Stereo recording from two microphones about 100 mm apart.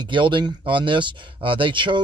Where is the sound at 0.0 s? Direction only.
55° right (ahead or behind).